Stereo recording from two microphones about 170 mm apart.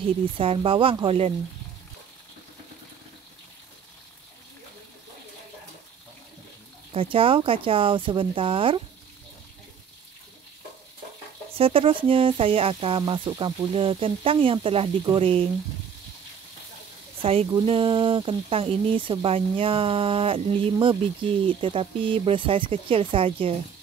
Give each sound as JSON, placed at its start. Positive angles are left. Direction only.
{"t": 0.4, "sound": "speech", "side_deg": -30}
{"t": 6.9, "sound": "speech", "side_deg": -30}
{"t": 11.5, "sound": "speech", "side_deg": -35}
{"t": 17.2, "sound": "speech", "side_deg": -35}